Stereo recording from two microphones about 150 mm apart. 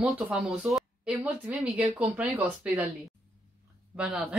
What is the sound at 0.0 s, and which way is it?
Speech, 5° right (ahead or behind).